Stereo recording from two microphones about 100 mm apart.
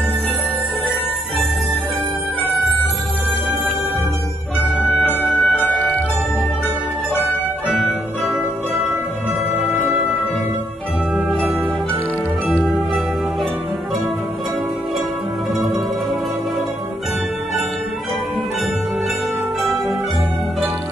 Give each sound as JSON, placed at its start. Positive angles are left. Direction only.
{"t": 5.3, "sound": "music", "side_deg": 15}
{"t": 7.7, "sound": "music", "side_deg": 0}
{"t": 11.1, "sound": "music", "side_deg": 0}
{"t": 12.6, "sound": "music", "side_deg": 0}